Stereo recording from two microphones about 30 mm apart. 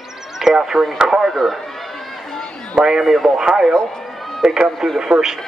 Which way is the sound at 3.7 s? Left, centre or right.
Centre.